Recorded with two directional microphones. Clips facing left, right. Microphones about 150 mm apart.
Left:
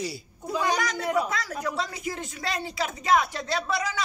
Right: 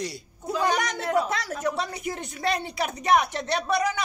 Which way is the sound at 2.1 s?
20° right (ahead or behind).